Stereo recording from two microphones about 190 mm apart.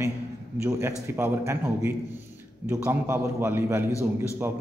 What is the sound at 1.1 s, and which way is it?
A man's voice, 10° right (ahead or behind).